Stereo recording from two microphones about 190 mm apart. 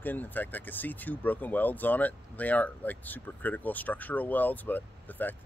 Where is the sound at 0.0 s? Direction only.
10° left (ahead or behind).